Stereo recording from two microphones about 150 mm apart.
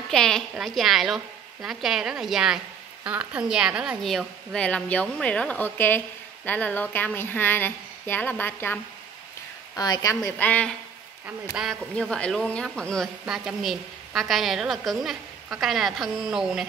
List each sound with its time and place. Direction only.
0.1 s a woman's voice: 5° left (ahead or behind)
9.8 s a woman's voice: 25° left (ahead or behind)
10.4 s speech: 10° left (ahead or behind)
11.6 s a woman's voice: 5° right (ahead or behind)
11.9 s a woman's voice: 5° left (ahead or behind)